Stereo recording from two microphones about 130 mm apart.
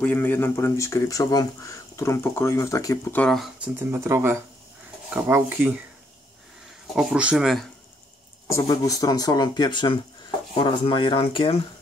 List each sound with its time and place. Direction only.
0.0 s speech: 15° left (ahead or behind)
3.2 s speech: centre (ahead or behind)
3.9 s speech: 20° right (ahead or behind)
7.0 s speech: 5° right (ahead or behind)
8.5 s speech: 20° left (ahead or behind); by 11.6 s 45° left (ahead or behind)